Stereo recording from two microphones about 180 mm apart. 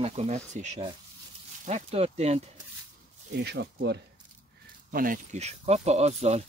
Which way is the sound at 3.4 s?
70° right (ahead or behind).